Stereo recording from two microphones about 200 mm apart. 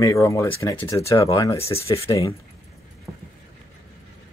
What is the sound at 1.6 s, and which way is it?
Speech, 30° left (ahead or behind).